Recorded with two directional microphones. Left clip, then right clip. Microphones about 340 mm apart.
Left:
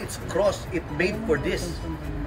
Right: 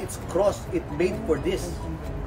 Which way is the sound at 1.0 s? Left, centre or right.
Left.